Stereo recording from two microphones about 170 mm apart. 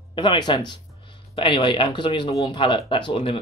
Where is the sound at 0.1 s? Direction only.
30° left (ahead or behind).